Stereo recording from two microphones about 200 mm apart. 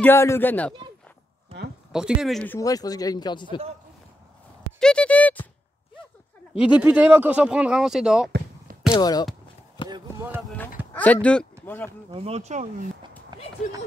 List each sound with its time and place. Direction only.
0.0 s speech: 15° left (ahead or behind)
1.9 s speech: 5° right (ahead or behind); by 3.6 s 25° left (ahead or behind)
4.7 s speech: 5° left (ahead or behind)
6.5 s speech: 5° right (ahead or behind)
8.9 s speech: 20° left (ahead or behind)
9.8 s basketball bounce: 25° left (ahead or behind)
10.9 s speech: 10° left (ahead or behind)
12.1 s speech: 30° right (ahead or behind)
13.3 s a sound: 20° right (ahead or behind)